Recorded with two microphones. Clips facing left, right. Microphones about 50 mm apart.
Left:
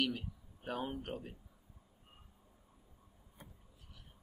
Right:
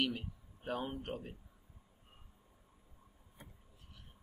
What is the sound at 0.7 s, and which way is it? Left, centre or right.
Speech, centre.